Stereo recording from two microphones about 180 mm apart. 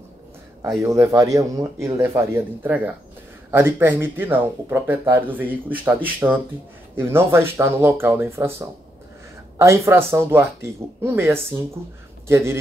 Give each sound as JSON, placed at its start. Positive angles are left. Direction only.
{"t": 0.7, "sound": "speech", "side_deg": -15}